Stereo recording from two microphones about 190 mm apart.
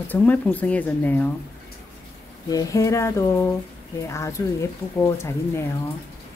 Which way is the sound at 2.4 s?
20° left (ahead or behind).